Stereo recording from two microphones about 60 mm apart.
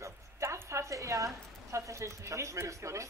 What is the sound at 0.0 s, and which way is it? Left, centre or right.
A woman's voice, right.